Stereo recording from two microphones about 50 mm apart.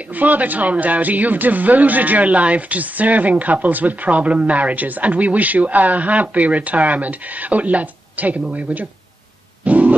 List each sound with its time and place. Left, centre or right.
0.1 s speech: right
9.7 s music: right